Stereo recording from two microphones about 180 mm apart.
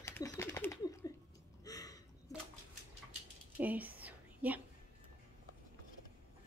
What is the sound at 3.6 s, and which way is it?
Whispering, 10° right (ahead or behind).